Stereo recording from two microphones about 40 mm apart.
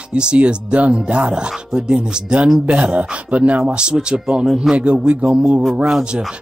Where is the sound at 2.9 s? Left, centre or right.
Right.